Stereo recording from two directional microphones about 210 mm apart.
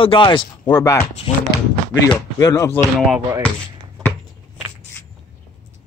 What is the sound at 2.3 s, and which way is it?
Speech, 15° left (ahead or behind).